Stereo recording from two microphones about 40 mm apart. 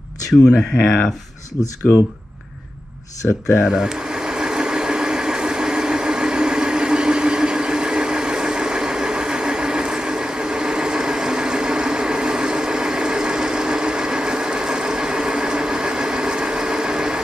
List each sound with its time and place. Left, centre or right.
3.6 s vehicle: centre